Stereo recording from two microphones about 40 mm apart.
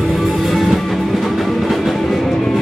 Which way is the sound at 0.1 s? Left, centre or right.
Centre.